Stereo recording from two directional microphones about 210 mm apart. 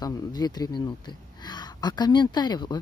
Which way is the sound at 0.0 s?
20° left (ahead or behind).